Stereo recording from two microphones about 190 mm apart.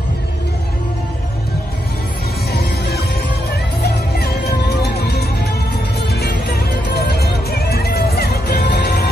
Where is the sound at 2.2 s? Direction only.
55° left (ahead or behind).